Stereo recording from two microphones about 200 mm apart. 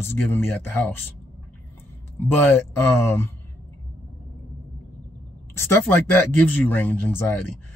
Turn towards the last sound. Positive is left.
turn(degrees=10)  # may be behind; listen again after turning